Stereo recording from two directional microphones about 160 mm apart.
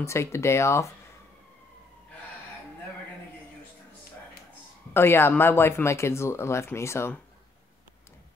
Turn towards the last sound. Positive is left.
turn(degrees=15)  # may be behind; listen again after turning